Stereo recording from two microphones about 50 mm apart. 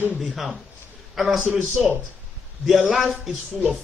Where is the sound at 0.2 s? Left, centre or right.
Centre.